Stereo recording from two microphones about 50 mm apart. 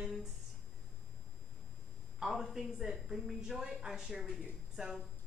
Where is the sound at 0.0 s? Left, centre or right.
Centre.